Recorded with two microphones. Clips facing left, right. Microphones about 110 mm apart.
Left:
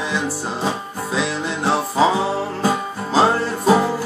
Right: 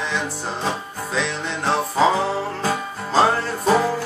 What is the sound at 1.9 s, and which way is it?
Music, 15° left (ahead or behind).